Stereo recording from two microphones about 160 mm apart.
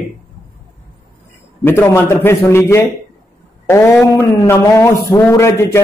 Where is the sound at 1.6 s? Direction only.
15° left (ahead or behind).